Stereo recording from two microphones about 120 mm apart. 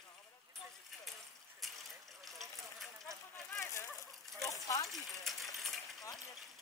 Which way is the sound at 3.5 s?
20° left (ahead or behind).